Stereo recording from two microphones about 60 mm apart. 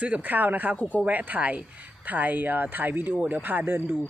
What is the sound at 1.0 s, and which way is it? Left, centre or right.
Speech, right.